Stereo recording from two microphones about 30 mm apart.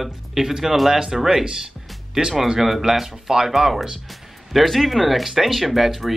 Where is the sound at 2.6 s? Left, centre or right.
Centre.